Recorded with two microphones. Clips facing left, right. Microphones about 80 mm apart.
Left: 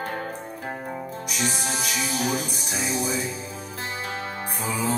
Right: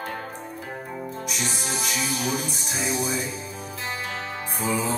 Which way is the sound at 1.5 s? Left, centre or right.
Left.